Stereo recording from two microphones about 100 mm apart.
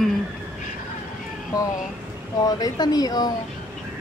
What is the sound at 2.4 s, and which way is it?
Speech, 40° left (ahead or behind).